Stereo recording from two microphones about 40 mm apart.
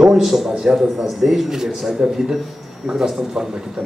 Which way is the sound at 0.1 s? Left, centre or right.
Centre.